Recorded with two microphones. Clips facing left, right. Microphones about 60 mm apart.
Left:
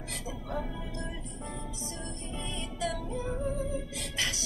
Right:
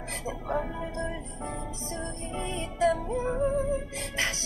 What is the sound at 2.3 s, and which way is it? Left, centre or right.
Music, right.